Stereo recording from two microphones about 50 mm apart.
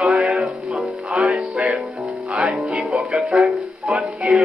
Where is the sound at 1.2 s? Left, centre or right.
Centre.